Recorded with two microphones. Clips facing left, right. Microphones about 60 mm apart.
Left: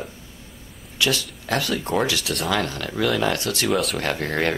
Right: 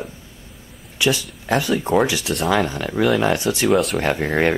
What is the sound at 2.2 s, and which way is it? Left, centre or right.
Speech, centre.